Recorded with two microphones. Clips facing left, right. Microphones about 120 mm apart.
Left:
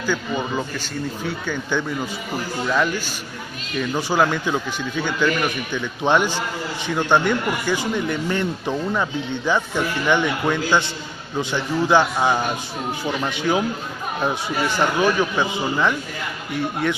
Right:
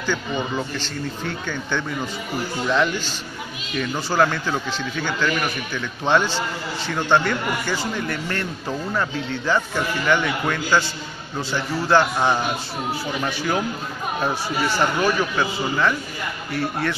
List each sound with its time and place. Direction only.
0.0 s speech: 10° left (ahead or behind)